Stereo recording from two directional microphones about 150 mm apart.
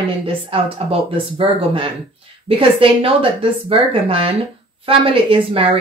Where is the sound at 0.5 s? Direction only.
35° right (ahead or behind).